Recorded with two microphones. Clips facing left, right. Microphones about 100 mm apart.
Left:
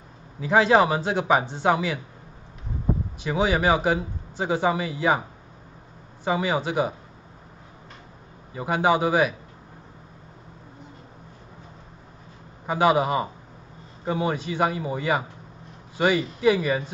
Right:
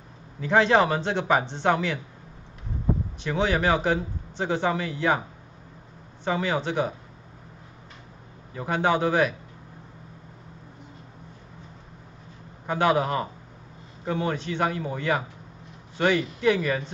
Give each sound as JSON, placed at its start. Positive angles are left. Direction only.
{"t": 0.4, "sound": "speech", "side_deg": 5}
{"t": 3.2, "sound": "speech", "side_deg": 10}
{"t": 6.2, "sound": "speech", "side_deg": 10}
{"t": 8.5, "sound": "speech", "side_deg": 10}
{"t": 12.6, "sound": "speech", "side_deg": 10}